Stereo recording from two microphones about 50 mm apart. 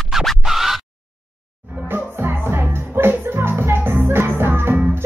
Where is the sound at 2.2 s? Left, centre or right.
Right.